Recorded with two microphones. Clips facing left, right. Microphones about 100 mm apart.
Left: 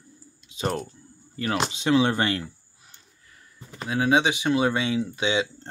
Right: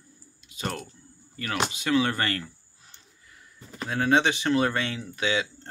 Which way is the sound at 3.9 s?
5° left (ahead or behind).